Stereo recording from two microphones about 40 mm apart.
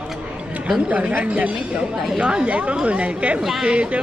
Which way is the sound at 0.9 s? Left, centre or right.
Right.